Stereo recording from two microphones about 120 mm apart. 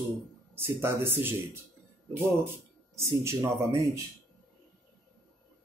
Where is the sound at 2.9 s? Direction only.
25° right (ahead or behind).